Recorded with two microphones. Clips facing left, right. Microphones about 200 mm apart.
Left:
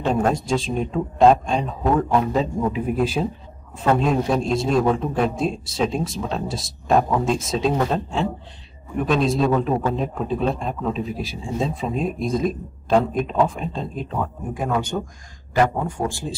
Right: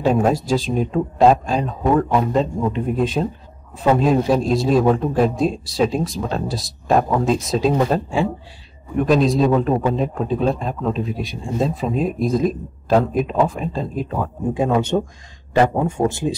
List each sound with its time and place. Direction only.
0.0 s speech: 5° right (ahead or behind)
8.9 s speech: centre (ahead or behind)
14.5 s a man's voice: 25° right (ahead or behind)